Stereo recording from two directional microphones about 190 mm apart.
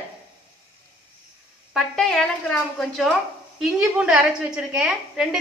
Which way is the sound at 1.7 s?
5° left (ahead or behind).